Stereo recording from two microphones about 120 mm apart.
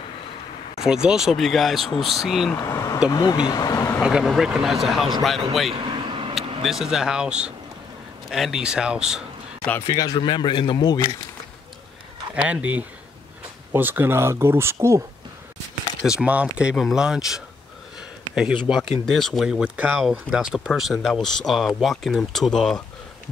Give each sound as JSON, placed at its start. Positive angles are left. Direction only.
{"t": 0.7, "sound": "speech", "side_deg": -5}
{"t": 2.5, "sound": "speech", "side_deg": 25}
{"t": 4.0, "sound": "speech", "side_deg": -5}
{"t": 5.7, "sound": "vehicle", "side_deg": -45}
{"t": 6.6, "sound": "speech", "side_deg": 0}
{"t": 9.9, "sound": "speech", "side_deg": 35}
{"t": 12.4, "sound": "speech", "side_deg": -10}
{"t": 16.1, "sound": "speech", "side_deg": -10}
{"t": 18.7, "sound": "speech", "side_deg": 0}